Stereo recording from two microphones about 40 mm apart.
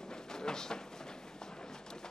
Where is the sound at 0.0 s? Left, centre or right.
Centre.